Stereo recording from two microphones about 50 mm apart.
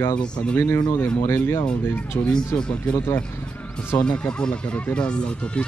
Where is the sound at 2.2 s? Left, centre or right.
Left.